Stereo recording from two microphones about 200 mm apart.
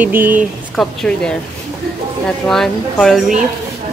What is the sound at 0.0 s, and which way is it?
Speech, 10° right (ahead or behind).